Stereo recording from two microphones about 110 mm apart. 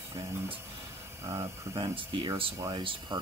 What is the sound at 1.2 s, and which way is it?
Speech, 40° right (ahead or behind).